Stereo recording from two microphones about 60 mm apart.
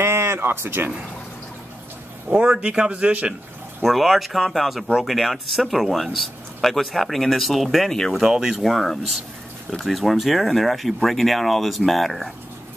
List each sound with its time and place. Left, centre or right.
0.0 s a sound: right
2.3 s a man's voice: centre
3.8 s speech: centre